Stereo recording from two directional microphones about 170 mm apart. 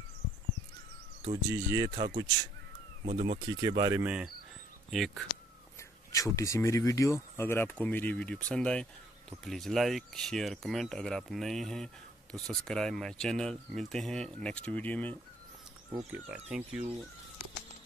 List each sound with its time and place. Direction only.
1.2 s speech: 25° right (ahead or behind)
3.1 s speech: 35° right (ahead or behind)
3.4 s speech: 25° right (ahead or behind)
4.0 s speech: 5° right (ahead or behind)
5.8 s speech: 20° left (ahead or behind)
16.1 s speech: 5° right (ahead or behind)